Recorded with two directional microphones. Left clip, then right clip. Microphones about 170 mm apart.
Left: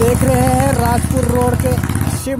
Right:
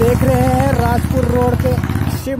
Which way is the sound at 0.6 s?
10° left (ahead or behind).